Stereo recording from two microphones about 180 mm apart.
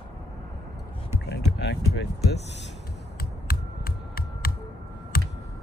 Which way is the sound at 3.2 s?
55° left (ahead or behind).